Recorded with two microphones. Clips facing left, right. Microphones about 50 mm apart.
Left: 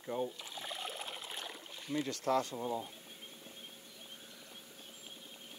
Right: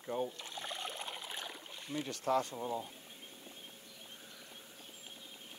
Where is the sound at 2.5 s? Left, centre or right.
Centre.